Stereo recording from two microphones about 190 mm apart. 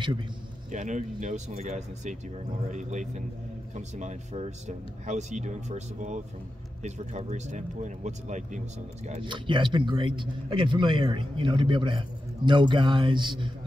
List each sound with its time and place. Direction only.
0.7 s speech: 40° right (ahead or behind)
9.3 s a man's voice: 25° right (ahead or behind)